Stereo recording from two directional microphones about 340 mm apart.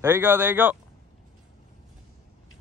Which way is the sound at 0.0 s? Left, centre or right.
Centre.